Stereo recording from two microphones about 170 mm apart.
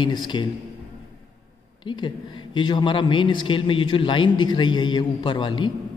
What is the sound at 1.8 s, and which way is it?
A man's voice, 25° left (ahead or behind).